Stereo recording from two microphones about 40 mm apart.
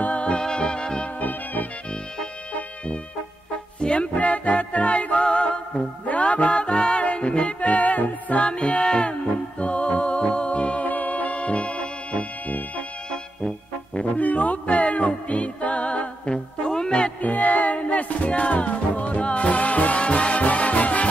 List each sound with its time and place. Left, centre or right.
0.0 s music: left
1.2 s music: left
3.8 s music: left
8.5 s music: left
14.1 s music: left
17.2 s music: left